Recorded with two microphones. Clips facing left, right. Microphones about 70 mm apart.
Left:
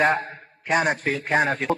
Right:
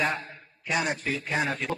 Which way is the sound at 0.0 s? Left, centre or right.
Left.